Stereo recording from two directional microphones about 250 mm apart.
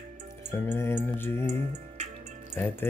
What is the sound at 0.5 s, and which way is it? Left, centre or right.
Music, centre.